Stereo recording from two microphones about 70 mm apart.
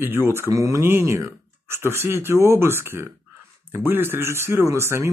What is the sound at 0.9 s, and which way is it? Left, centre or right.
Speech, right.